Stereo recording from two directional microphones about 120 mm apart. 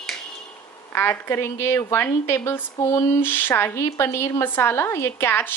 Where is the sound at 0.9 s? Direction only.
20° left (ahead or behind).